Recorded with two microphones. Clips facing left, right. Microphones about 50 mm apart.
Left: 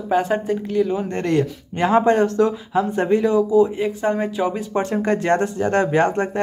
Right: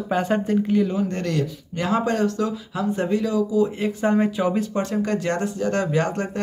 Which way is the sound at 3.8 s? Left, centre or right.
Centre.